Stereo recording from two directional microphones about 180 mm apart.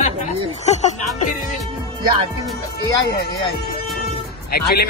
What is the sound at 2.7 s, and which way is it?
Speech, 65° left (ahead or behind).